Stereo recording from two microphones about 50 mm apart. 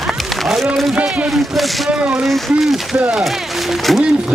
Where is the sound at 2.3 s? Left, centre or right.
Centre.